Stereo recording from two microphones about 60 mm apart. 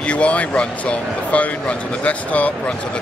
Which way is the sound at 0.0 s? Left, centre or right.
Centre.